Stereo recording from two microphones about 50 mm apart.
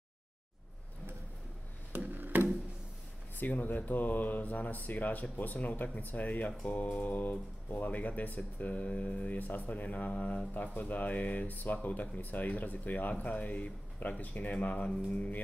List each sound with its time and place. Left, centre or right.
1.9 s music: right
3.3 s speech: left